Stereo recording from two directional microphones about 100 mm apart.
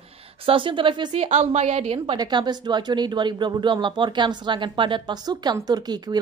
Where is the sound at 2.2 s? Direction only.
45° right (ahead or behind).